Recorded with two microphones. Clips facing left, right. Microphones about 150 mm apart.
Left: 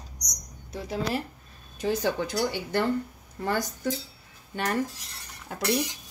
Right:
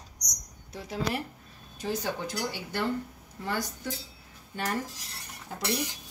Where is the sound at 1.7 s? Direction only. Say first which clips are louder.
Left 6 dB; 60° left (ahead or behind).